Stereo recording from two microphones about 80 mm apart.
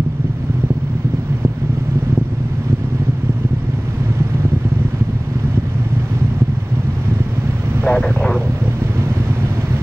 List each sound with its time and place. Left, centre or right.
7.8 s vehicle: centre